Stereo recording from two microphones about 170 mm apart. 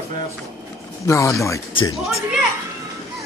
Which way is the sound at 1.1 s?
15° left (ahead or behind).